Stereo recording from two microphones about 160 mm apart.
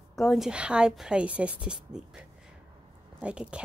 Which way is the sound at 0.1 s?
Centre (ahead or behind).